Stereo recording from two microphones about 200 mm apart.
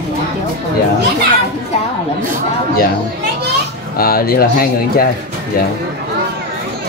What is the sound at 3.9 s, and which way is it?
Speech, 50° left (ahead or behind).